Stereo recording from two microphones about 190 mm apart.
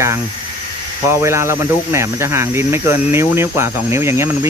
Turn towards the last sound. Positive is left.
turn(degrees=-15)  # may be behind; listen again after turning